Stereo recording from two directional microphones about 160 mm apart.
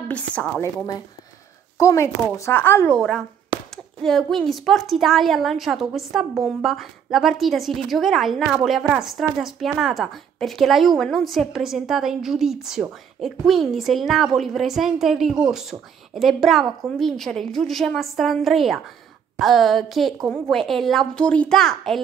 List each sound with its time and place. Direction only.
0.1 s speech: 10° left (ahead or behind)
1.8 s a woman's voice: 20° left (ahead or behind); by 22.0 s centre (ahead or behind)